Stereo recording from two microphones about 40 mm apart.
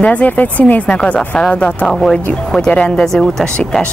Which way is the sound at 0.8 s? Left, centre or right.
Left.